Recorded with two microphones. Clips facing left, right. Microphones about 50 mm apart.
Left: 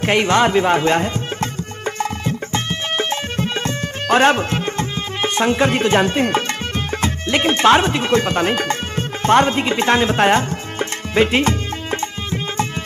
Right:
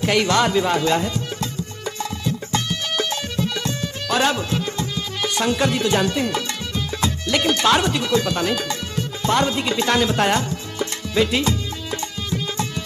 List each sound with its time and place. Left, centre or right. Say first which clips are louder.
0.0 s music: left 3 dB; left